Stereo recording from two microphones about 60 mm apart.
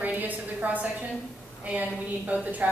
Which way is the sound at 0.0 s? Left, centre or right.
Right.